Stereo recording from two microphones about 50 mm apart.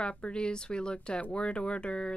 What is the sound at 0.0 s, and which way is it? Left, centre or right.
A woman's voice, left.